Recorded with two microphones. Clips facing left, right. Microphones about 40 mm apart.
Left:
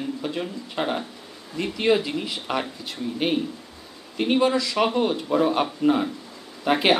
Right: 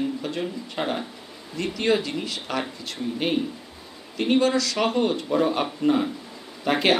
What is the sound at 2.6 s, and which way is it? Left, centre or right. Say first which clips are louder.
Speech: even; centre.